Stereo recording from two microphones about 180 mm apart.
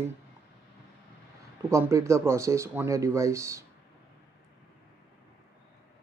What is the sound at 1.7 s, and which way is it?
Speech, 15° right (ahead or behind).